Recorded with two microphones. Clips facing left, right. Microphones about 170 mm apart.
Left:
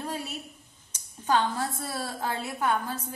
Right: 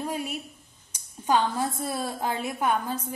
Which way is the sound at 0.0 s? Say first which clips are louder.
Right 4 dB; 15° right (ahead or behind).